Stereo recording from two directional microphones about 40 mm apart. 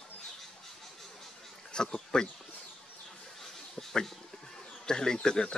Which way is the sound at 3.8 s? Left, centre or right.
Centre.